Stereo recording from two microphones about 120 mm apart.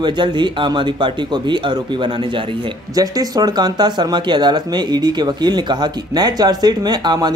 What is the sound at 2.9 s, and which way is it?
Speech, 30° right (ahead or behind).